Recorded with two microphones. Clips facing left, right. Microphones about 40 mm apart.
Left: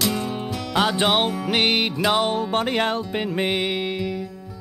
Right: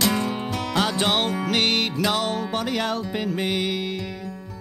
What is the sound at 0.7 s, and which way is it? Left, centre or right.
Music, centre.